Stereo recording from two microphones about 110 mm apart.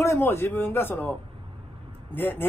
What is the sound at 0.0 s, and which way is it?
Speech, 25° left (ahead or behind).